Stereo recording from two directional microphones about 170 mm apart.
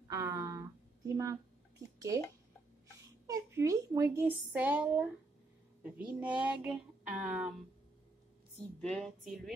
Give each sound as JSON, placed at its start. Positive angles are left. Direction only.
{"t": 0.1, "sound": "a sound", "side_deg": -20}
{"t": 2.0, "sound": "speech", "side_deg": -20}
{"t": 3.3, "sound": "speech", "side_deg": -20}
{"t": 8.9, "sound": "speech", "side_deg": 0}